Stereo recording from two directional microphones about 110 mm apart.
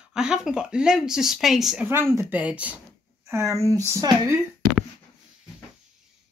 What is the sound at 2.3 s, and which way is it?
Speech, 15° right (ahead or behind).